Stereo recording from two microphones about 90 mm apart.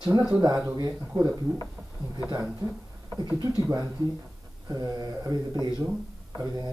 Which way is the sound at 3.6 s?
40° right (ahead or behind).